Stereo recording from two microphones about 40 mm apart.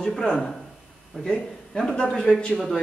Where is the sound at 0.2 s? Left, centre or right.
Centre.